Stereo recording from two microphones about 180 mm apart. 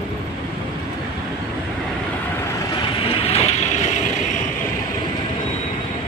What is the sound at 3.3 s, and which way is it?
Vehicle, 40° left (ahead or behind).